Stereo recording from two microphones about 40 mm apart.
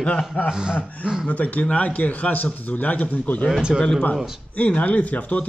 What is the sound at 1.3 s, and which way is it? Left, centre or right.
Speech, left.